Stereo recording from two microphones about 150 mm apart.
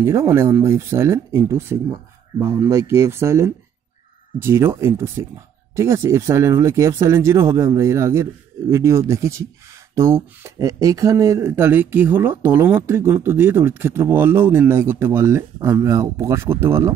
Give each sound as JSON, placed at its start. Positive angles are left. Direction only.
{"t": 0.0, "sound": "speech", "side_deg": -15}